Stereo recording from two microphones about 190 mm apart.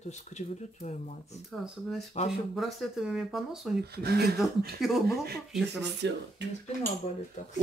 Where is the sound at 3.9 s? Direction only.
55° right (ahead or behind).